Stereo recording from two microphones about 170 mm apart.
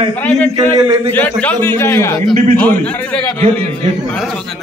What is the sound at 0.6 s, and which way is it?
Speech, 20° right (ahead or behind).